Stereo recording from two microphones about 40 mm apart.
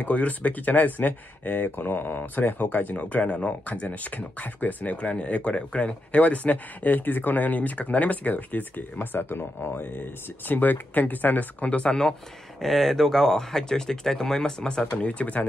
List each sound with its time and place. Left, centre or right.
0.0 s speech: left
10.5 s speech: left
11.8 s speech: centre; by 15.4 s left